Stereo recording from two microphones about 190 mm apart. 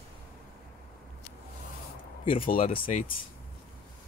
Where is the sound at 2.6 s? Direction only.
30° left (ahead or behind).